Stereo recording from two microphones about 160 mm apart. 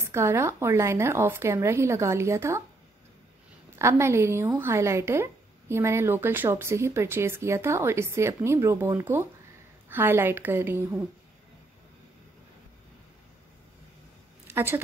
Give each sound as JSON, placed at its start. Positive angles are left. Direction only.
{"t": 0.0, "sound": "a woman's voice", "side_deg": -15}
{"t": 3.7, "sound": "a woman's voice", "side_deg": -15}
{"t": 14.5, "sound": "a woman's voice", "side_deg": -15}